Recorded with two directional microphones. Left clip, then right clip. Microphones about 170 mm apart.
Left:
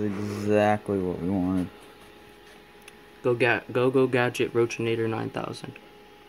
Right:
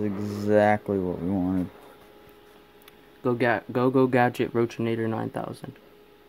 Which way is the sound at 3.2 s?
45° right (ahead or behind).